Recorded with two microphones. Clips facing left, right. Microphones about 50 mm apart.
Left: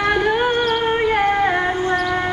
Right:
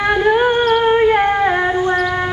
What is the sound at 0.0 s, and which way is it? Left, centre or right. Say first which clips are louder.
Humming: right 4 dB; centre.